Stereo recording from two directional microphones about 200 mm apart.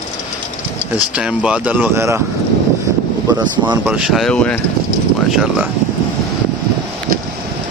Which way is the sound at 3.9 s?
Centre (ahead or behind).